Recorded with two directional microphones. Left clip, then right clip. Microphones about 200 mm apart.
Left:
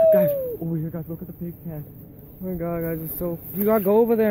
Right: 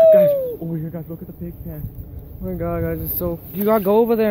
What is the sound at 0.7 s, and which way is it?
Speech, 25° left (ahead or behind).